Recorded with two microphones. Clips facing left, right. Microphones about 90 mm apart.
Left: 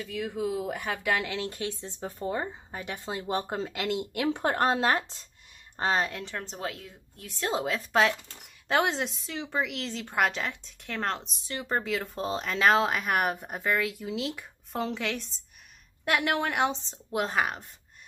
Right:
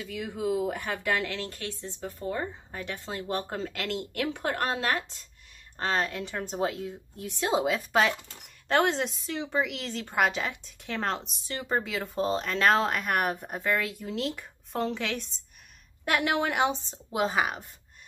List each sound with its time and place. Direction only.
0.0 s a woman's voice: 5° right (ahead or behind); by 4.4 s 15° left (ahead or behind)
4.4 s speech: 25° left (ahead or behind)
5.8 s speech: 15° left (ahead or behind)
6.0 s a woman's voice: 5° right (ahead or behind)
7.6 s a woman's voice: 5° right (ahead or behind)